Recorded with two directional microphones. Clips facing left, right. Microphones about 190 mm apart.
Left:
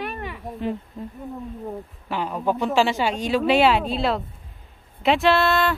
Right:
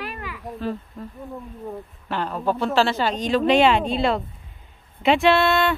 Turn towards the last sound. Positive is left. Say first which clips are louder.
# right 1 dB
turn(degrees=0)  # may be behind; listen again after turning